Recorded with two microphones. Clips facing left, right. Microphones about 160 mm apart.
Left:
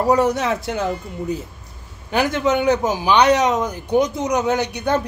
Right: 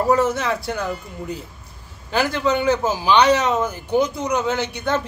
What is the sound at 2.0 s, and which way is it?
A man's voice, 20° left (ahead or behind).